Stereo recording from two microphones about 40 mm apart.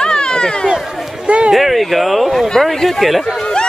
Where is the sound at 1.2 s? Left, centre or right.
Right.